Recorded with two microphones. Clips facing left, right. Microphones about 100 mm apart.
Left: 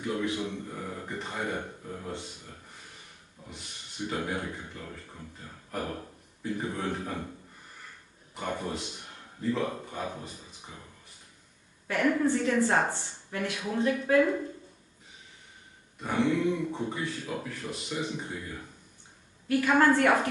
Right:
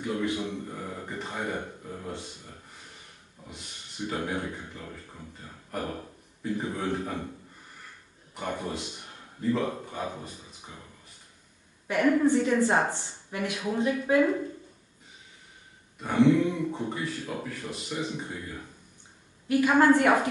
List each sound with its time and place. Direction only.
0.0 s a man's voice: centre (ahead or behind)
3.4 s a sound: centre (ahead or behind)
4.1 s a man's voice: centre (ahead or behind)
8.4 s speech: centre (ahead or behind)
11.9 s a woman's voice: 15° right (ahead or behind)
16.0 s a man's voice: centre (ahead or behind)
19.4 s a woman's voice: 15° right (ahead or behind)